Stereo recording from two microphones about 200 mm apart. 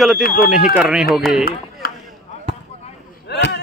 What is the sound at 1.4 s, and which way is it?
Chop, 50° left (ahead or behind).